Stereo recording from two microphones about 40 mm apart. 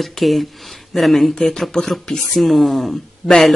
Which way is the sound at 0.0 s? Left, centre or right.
Centre.